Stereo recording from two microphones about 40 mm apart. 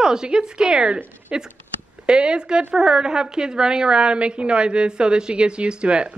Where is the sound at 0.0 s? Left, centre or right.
Centre.